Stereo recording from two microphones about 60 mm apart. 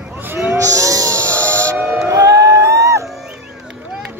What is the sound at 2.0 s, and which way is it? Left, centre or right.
Music, right.